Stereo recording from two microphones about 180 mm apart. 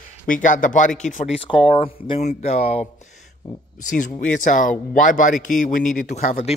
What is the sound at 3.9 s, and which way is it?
A man's voice, 45° left (ahead or behind).